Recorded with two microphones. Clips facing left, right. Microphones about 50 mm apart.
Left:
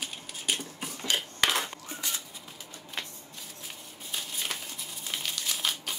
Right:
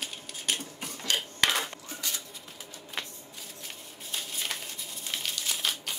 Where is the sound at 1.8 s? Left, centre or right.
Left.